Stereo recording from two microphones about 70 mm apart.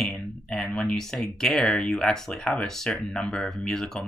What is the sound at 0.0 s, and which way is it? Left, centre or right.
Speech, centre.